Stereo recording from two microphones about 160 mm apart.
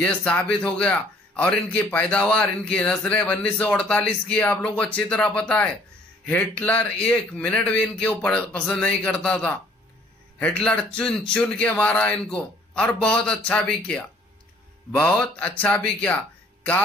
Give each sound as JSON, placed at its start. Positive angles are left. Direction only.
{"t": 0.0, "sound": "a man's voice", "side_deg": 5}